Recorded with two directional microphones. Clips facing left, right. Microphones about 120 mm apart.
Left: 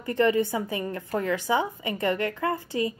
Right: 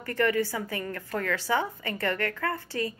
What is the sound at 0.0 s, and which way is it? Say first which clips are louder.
A woman's voice: left 3 dB; 20° left (ahead or behind).